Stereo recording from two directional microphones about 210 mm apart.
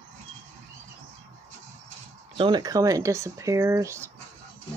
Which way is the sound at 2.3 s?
20° right (ahead or behind).